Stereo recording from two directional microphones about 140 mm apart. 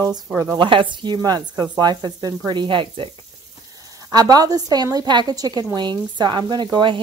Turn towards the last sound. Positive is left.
turn(degrees=-35)  # may be behind; listen again after turning